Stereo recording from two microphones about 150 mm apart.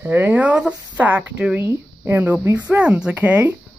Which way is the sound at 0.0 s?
10° right (ahead or behind).